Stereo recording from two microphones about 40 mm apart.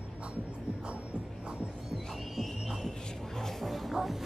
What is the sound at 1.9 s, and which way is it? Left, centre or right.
Music, centre.